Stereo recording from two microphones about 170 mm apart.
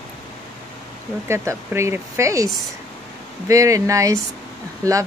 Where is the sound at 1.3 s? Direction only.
15° right (ahead or behind).